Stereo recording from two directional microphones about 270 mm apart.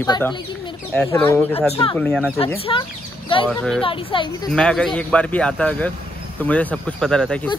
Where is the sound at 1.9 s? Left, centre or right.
Centre.